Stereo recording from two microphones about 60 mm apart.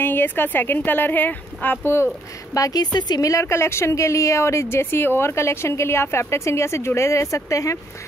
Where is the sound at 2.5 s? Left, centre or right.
Left.